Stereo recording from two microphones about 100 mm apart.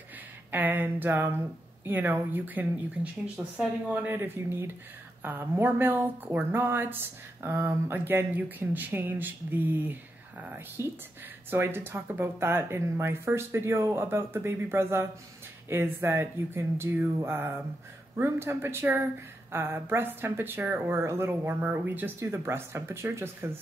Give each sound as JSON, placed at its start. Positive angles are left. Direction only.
{"t": 0.5, "sound": "speech", "side_deg": -20}